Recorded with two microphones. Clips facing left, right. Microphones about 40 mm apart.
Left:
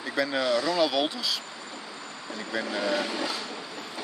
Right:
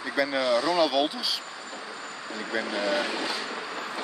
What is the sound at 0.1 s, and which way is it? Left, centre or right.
Speech, centre.